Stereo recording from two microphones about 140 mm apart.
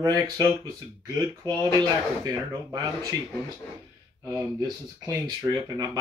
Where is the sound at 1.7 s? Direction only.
25° right (ahead or behind).